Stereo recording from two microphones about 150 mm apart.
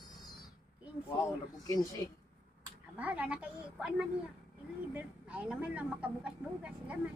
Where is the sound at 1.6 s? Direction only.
20° left (ahead or behind).